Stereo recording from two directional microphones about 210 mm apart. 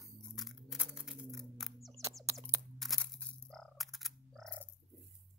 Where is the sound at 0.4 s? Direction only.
Centre (ahead or behind).